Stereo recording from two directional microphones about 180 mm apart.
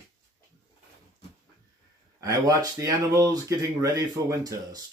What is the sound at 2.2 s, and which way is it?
Speech, 20° right (ahead or behind).